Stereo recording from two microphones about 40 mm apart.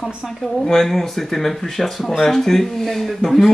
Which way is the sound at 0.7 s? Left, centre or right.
Centre.